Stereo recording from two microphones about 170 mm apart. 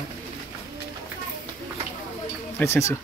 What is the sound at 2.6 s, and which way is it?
Speech, 15° left (ahead or behind).